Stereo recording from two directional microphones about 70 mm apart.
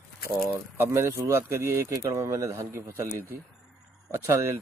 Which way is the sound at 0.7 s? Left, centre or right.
Right.